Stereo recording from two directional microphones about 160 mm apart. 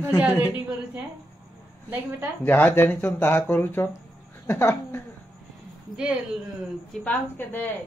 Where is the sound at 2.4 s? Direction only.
10° left (ahead or behind).